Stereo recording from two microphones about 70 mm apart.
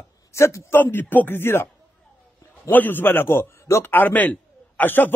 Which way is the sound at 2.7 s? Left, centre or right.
Left.